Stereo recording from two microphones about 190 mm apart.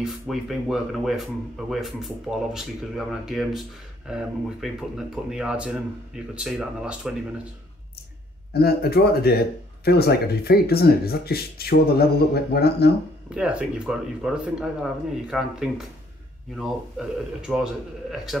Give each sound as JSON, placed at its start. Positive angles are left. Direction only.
{"t": 0.0, "sound": "speech", "side_deg": 0}
{"t": 8.5, "sound": "speech", "side_deg": 55}
{"t": 13.3, "sound": "speech", "side_deg": -5}
{"t": 17.5, "sound": "a man's voice", "side_deg": 0}